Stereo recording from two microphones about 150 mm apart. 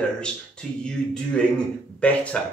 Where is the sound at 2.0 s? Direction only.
5° left (ahead or behind).